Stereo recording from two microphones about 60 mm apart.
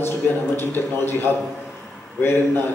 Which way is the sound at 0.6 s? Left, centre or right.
Left.